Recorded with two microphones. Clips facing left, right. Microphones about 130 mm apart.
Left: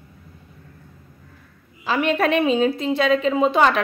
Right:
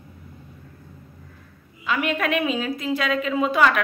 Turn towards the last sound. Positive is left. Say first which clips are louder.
# left 3 dB
turn(degrees=25)  # may be behind; listen again after turning